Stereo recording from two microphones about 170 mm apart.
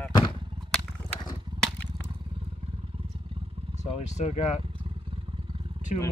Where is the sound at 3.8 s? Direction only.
40° left (ahead or behind).